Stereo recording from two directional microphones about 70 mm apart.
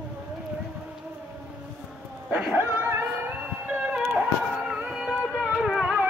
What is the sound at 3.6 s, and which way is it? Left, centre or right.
Music, centre.